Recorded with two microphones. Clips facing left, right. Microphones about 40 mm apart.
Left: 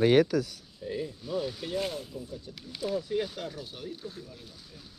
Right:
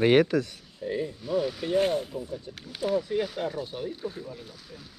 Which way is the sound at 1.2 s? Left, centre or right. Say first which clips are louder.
Right 7 dB; right.